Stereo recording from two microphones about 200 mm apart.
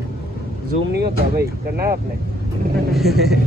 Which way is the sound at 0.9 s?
55° right (ahead or behind).